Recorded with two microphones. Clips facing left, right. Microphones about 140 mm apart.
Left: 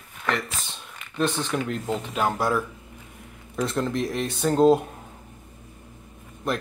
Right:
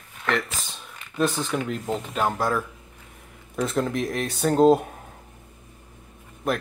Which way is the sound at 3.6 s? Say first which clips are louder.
Right 1 dB; centre (ahead or behind).